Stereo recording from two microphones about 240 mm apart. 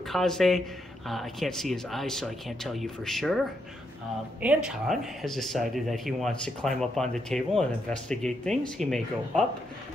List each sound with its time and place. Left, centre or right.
0.1 s speech: centre
4.4 s speech: centre